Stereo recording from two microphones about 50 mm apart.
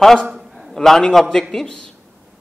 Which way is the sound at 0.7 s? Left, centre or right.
Centre.